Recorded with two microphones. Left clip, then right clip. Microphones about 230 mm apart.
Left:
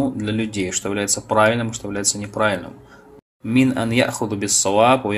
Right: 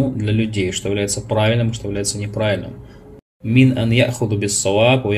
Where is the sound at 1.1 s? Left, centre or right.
Left.